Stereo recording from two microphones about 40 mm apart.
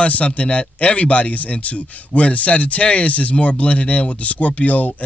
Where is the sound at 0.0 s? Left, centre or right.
Left.